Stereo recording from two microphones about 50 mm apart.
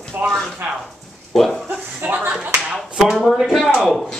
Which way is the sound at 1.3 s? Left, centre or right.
Centre.